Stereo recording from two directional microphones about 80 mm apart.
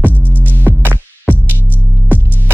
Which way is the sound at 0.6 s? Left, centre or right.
Right.